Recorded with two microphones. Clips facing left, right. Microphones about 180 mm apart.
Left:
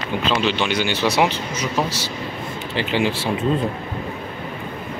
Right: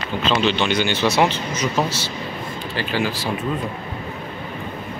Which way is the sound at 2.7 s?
20° left (ahead or behind).